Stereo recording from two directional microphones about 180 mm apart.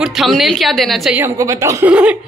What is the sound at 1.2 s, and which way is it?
Speech, 15° right (ahead or behind).